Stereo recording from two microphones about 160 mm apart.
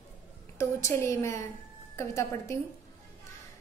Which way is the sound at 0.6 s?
20° left (ahead or behind).